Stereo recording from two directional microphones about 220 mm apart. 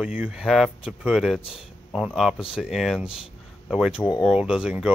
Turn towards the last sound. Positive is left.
turn(degrees=-5)  # may be behind; listen again after turning